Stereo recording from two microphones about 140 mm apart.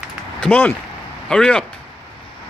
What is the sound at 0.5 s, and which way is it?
Speech, 10° left (ahead or behind).